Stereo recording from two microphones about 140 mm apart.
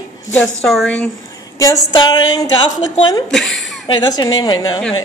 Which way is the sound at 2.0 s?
30° left (ahead or behind).